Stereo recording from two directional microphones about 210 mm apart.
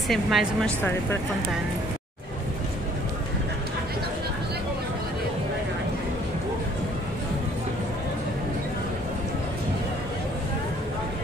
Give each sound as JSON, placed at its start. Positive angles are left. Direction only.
{"t": 0.1, "sound": "speech", "side_deg": 0}